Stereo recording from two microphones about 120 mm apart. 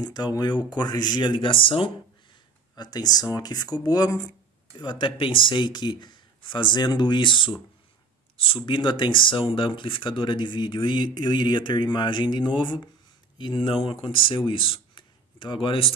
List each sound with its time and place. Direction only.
0.0 s speech: 35° left (ahead or behind)
2.7 s speech: 35° left (ahead or behind)
4.7 s speech: 40° left (ahead or behind)
8.6 s speech: 40° left (ahead or behind)